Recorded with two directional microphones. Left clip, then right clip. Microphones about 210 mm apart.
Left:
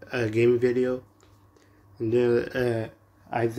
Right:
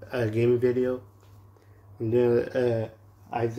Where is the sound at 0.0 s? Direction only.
5° left (ahead or behind).